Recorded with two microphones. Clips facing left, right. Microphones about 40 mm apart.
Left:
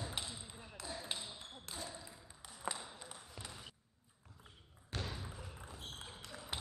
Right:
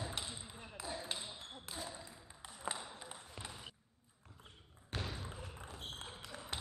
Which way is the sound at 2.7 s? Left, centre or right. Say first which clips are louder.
Right 2 dB; right.